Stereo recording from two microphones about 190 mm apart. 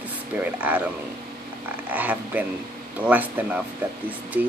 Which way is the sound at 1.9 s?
10° right (ahead or behind).